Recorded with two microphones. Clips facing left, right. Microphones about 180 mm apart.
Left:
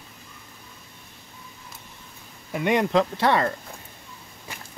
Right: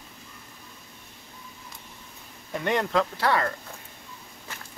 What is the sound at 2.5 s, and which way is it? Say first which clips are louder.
Speech: left 4 dB; 10° left (ahead or behind).